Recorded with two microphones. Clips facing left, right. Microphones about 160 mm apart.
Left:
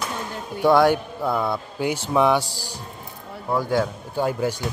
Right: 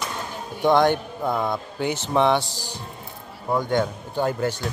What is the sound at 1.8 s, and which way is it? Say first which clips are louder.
A man's voice: left 1 dB; 10° left (ahead or behind).